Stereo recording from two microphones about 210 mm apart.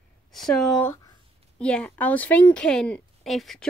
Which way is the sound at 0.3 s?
Centre (ahead or behind).